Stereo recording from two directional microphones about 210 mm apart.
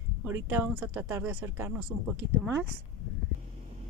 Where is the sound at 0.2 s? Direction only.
10° right (ahead or behind).